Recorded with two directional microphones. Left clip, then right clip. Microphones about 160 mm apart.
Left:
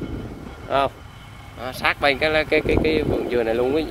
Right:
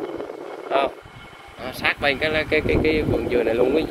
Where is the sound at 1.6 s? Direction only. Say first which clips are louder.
Left 2 dB; 25° left (ahead or behind).